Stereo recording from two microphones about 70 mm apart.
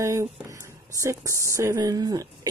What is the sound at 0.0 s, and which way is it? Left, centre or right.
A woman's voice, right.